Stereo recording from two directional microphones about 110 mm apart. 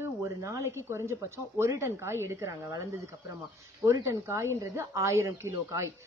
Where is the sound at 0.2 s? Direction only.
30° right (ahead or behind).